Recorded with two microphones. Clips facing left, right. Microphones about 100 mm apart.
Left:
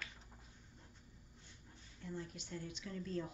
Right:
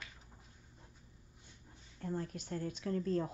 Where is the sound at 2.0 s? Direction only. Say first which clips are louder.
Right 7 dB; 50° right (ahead or behind).